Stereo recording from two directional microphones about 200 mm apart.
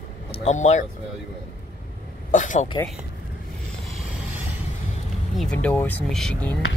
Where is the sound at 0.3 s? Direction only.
35° left (ahead or behind).